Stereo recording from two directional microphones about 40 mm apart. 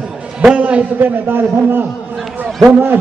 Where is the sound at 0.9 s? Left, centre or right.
Right.